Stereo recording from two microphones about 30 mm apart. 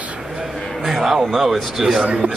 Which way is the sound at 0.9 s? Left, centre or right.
Centre.